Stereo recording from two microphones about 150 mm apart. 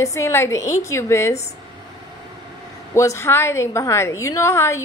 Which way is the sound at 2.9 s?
20° left (ahead or behind).